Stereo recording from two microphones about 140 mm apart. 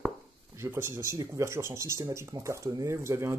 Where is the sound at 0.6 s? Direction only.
15° right (ahead or behind).